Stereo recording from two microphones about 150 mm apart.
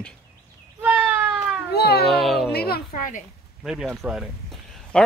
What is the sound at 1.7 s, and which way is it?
Speech, 90° left.